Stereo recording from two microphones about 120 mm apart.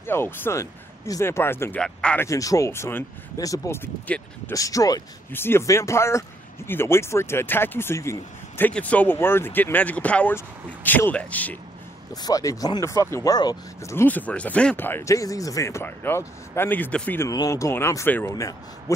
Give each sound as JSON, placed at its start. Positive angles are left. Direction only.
{"t": 0.0, "sound": "speech", "side_deg": 20}
{"t": 1.8, "sound": "speech", "side_deg": 10}
{"t": 2.2, "sound": "speech", "side_deg": 30}
{"t": 3.3, "sound": "speech", "side_deg": 30}
{"t": 5.3, "sound": "speech", "side_deg": 20}
{"t": 12.1, "sound": "speech", "side_deg": 30}
{"t": 14.0, "sound": "speech", "side_deg": 15}
{"t": 17.3, "sound": "speech", "side_deg": 30}